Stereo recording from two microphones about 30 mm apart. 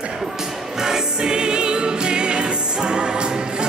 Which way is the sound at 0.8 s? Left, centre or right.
Right.